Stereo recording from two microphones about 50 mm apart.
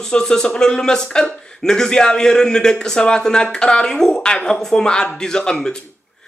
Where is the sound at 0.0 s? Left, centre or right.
Centre.